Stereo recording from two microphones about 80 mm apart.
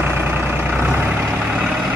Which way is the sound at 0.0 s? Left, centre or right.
Right.